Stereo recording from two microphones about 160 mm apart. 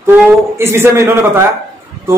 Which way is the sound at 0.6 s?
15° right (ahead or behind).